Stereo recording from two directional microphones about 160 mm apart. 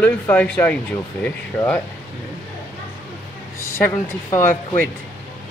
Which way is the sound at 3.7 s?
15° left (ahead or behind).